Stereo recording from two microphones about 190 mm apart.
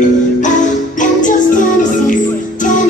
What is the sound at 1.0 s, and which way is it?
Music, 40° left (ahead or behind).